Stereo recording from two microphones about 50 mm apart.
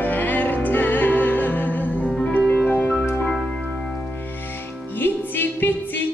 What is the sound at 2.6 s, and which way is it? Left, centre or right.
Music, left.